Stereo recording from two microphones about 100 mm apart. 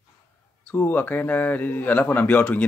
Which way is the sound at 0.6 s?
20° left (ahead or behind).